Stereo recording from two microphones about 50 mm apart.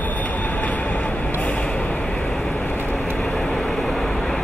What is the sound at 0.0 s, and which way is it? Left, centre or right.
Vehicle, left.